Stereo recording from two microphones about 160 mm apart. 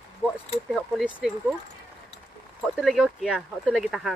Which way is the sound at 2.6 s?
Centre (ahead or behind).